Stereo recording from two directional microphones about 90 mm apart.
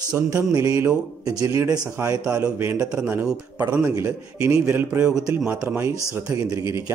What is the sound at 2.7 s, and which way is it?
Speech, 10° right (ahead or behind).